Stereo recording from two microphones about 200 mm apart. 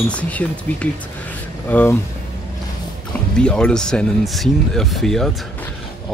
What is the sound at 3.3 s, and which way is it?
Speech, 5° left (ahead or behind).